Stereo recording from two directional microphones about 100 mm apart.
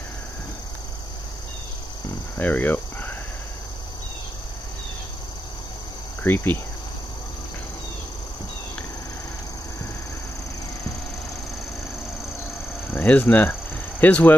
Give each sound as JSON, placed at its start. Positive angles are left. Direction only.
{"t": 2.3, "sound": "a sound", "side_deg": 15}
{"t": 6.2, "sound": "speech", "side_deg": 20}
{"t": 12.9, "sound": "speech", "side_deg": 15}